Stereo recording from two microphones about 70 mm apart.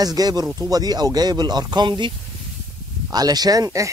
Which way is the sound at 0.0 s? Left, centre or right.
Right.